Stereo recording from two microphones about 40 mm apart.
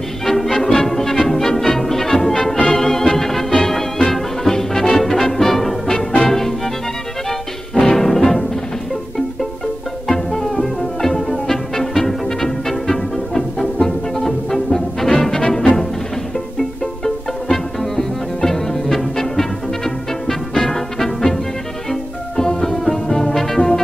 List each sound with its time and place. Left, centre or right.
0.2 s music: centre
2.5 s music: left
2.8 s music: centre
7.7 s music: centre
10.0 s music: centre
17.0 s music: centre
22.4 s music: centre